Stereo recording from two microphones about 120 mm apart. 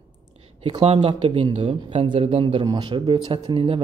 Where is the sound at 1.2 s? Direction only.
45° right (ahead or behind).